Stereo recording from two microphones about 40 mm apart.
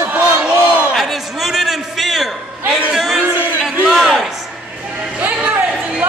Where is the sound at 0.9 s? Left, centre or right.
Centre.